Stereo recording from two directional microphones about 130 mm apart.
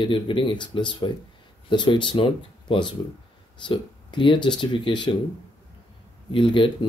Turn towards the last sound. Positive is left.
turn(degrees=40)  # may be behind; listen again after turning